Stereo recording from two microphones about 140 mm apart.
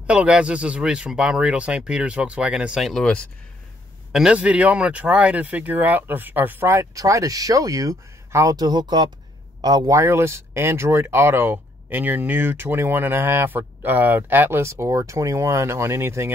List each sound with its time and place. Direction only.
0.0 s speech: 10° right (ahead or behind)
4.1 s speech: 5° right (ahead or behind)